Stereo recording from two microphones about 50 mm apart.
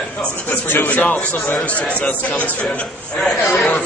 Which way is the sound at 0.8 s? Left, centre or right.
Left.